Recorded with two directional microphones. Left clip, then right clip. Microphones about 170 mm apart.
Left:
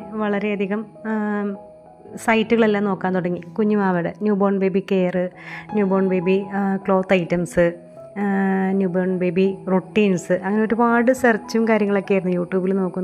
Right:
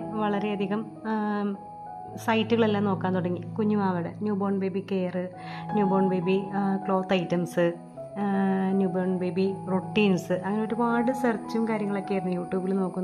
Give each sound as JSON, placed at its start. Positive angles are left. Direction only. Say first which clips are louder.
{"t": 0.1, "sound": "a woman's voice", "louder": "left 6 dB", "side_deg": 15}